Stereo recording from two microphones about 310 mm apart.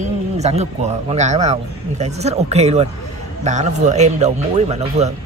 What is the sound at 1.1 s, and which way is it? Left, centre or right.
Speech, right.